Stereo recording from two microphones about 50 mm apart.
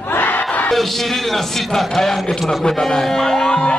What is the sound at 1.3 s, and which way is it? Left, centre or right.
A man's voice, centre.